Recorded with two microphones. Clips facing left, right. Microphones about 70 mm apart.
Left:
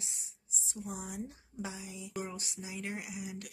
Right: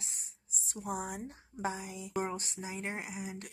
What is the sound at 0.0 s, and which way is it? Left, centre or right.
Speech, right.